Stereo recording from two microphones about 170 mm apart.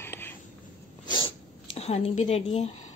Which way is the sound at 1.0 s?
30° left (ahead or behind).